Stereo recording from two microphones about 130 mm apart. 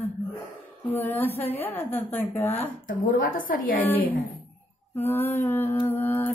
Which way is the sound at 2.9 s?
90° left.